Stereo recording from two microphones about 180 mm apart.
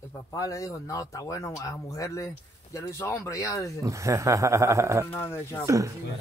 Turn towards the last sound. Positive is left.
turn(degrees=-15)  # may be behind; listen again after turning